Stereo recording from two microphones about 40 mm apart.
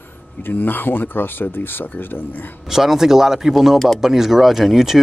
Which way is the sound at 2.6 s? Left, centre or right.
Centre.